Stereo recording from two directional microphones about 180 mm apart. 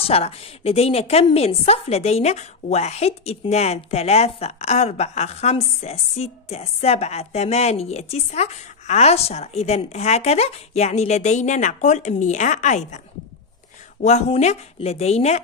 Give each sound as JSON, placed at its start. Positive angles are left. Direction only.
{"t": 0.0, "sound": "a woman's voice", "side_deg": 35}
{"t": 14.0, "sound": "a woman's voice", "side_deg": 40}